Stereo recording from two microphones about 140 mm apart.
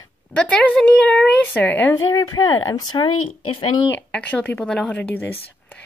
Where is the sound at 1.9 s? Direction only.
25° left (ahead or behind).